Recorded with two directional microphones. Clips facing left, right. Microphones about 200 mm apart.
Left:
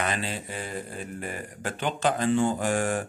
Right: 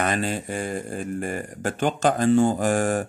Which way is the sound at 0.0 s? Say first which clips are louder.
Right 5 dB; 45° right (ahead or behind).